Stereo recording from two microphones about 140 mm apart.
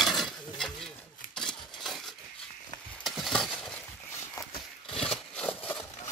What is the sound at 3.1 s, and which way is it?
Stir, centre (ahead or behind).